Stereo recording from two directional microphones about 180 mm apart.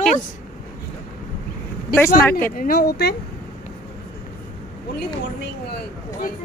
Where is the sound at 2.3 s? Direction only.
10° left (ahead or behind).